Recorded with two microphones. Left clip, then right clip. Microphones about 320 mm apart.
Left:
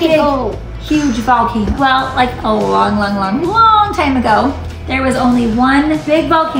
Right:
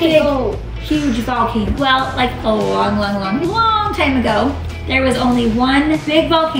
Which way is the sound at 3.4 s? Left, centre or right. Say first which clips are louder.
Left 6 dB; centre.